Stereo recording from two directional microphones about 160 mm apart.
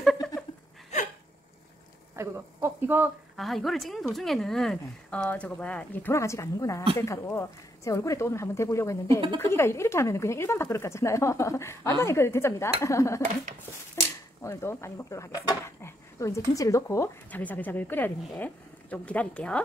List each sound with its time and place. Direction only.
2.1 s speech: 15° right (ahead or behind)
3.3 s speech: centre (ahead or behind); by 13.2 s 20° left (ahead or behind)
14.4 s speech: 15° left (ahead or behind)